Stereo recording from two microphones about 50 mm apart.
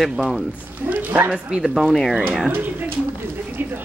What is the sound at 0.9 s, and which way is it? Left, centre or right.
Speech, right.